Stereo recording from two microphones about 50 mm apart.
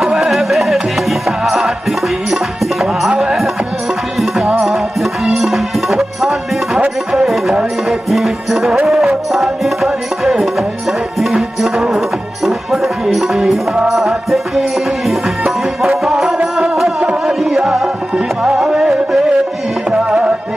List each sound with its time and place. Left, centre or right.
0.0 s music: centre
4.6 s music: centre
20.1 s music: right